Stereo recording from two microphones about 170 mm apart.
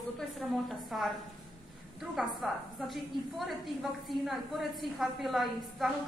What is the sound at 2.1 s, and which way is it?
A woman's voice, centre (ahead or behind).